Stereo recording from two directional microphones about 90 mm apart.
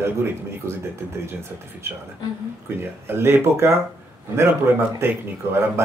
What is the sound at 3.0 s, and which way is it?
Speech, 25° right (ahead or behind).